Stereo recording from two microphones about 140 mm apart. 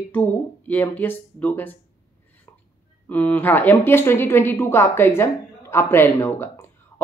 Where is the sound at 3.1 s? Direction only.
10° left (ahead or behind).